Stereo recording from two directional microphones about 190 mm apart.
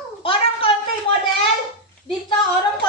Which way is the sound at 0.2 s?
30° left (ahead or behind).